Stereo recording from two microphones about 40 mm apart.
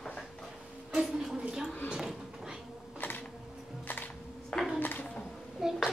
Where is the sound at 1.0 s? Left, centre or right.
Centre.